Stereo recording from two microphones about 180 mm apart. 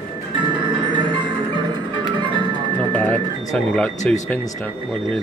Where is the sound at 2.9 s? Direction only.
5° left (ahead or behind).